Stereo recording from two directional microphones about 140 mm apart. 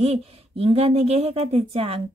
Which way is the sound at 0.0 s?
45° right (ahead or behind).